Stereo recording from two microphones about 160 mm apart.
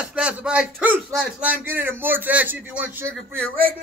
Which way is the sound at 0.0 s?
5° right (ahead or behind).